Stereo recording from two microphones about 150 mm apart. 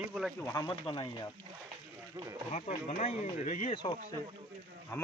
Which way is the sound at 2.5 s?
50° left (ahead or behind).